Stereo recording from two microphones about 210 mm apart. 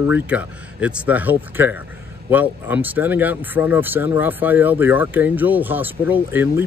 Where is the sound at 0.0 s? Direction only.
10° right (ahead or behind).